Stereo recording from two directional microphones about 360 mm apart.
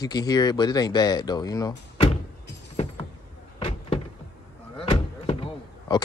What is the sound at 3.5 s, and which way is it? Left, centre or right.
Door, centre.